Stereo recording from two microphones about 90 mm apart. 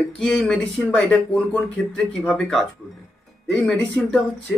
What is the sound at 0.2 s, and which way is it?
Speech, 10° left (ahead or behind).